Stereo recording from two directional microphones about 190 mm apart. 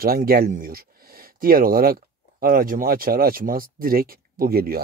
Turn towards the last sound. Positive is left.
turn(degrees=-50)  # may be behind; listen again after turning